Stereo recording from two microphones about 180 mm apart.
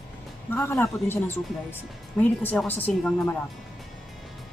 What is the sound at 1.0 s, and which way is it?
Speech, 15° left (ahead or behind).